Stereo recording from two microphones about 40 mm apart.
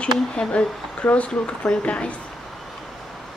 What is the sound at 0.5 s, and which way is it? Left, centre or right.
Speech, left.